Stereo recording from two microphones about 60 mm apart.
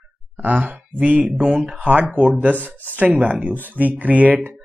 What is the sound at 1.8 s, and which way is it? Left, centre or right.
Speech, right.